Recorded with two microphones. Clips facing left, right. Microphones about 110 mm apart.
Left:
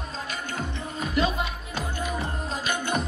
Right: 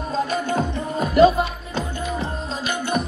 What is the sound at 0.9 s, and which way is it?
Music, 45° right (ahead or behind).